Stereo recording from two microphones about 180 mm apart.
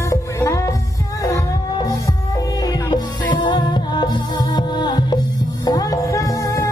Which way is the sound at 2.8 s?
25° left (ahead or behind).